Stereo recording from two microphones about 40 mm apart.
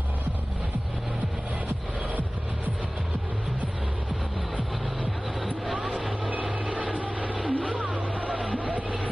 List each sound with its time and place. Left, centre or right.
6.4 s vehicle: right
8.5 s music: right